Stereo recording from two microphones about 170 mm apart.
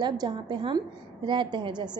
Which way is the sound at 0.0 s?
25° right (ahead or behind).